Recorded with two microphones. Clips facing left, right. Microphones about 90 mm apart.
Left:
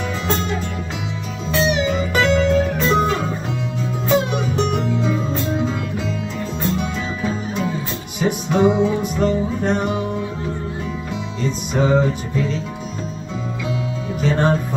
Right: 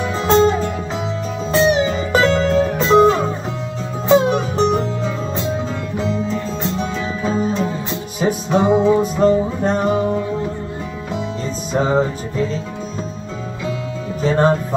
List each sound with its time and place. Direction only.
0.3 s music: 30° right (ahead or behind)
6.6 s music: 30° right (ahead or behind)
11.7 s music: 30° right (ahead or behind)
14.2 s music: 35° right (ahead or behind)